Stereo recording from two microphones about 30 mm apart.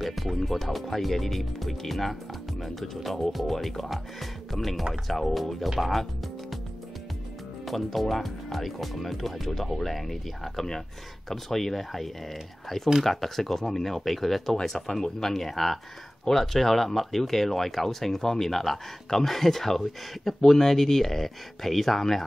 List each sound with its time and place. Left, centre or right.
0.0 s speech: centre
7.6 s speech: centre